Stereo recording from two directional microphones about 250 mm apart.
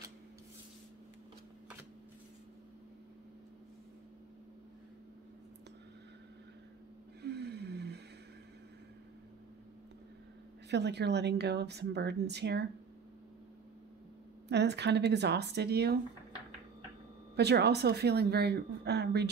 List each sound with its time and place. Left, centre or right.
7.2 s vehicle: right
10.7 s a woman's voice: right
14.5 s speech: right
17.4 s speech: right